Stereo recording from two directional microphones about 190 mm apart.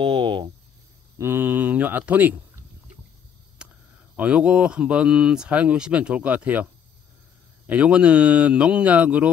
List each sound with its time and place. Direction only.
0.0 s speech: 25° right (ahead or behind)
1.1 s speech: 15° right (ahead or behind)
3.6 s a sound: 5° right (ahead or behind)
4.2 s speech: 5° right (ahead or behind)